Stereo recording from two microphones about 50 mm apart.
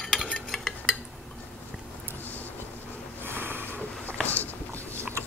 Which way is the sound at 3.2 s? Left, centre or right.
Right.